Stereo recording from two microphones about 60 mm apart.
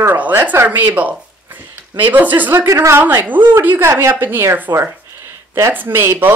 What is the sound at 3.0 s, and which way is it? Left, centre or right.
Speech, right.